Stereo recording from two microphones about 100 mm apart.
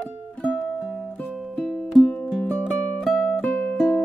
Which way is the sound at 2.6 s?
5° right (ahead or behind).